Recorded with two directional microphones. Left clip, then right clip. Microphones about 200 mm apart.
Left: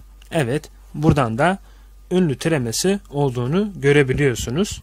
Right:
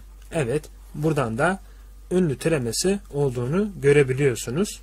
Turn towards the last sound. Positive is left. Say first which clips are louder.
# left 3 dB
turn(degrees=40)  # may be behind; listen again after turning